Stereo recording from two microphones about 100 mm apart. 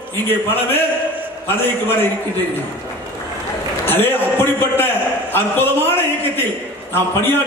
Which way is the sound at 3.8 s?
20° left (ahead or behind).